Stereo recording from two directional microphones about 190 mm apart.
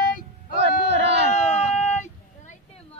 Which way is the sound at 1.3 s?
35° left (ahead or behind).